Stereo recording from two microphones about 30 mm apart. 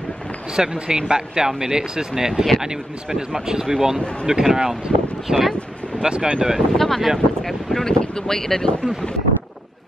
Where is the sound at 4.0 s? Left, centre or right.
Left.